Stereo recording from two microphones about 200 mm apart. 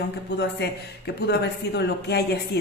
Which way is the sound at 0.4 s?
55° left (ahead or behind).